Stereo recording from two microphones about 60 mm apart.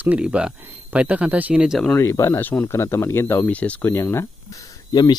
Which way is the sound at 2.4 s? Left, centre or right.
Left.